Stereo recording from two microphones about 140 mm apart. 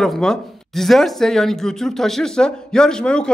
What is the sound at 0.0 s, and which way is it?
Speech, 5° left (ahead or behind).